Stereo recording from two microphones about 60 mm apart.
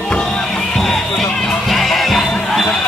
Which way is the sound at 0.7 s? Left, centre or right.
Centre.